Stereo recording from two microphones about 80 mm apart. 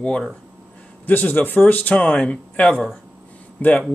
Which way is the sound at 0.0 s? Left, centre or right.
Centre.